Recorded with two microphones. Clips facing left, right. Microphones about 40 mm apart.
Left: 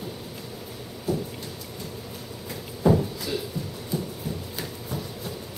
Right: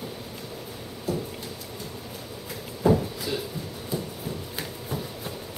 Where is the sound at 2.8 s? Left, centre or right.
Centre.